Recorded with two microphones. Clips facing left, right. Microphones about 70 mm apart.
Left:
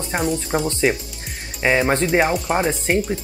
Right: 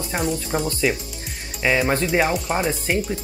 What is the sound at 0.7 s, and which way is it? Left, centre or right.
Speech, left.